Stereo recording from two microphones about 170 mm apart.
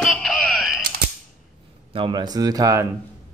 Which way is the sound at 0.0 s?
Centre (ahead or behind).